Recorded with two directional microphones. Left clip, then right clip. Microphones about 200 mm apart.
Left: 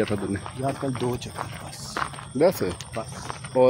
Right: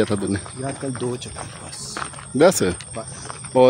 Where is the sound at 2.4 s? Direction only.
55° right (ahead or behind).